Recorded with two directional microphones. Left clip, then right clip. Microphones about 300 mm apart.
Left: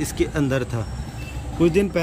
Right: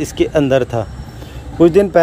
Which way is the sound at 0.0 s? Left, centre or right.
Centre.